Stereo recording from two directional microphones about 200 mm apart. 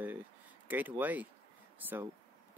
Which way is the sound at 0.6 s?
10° right (ahead or behind).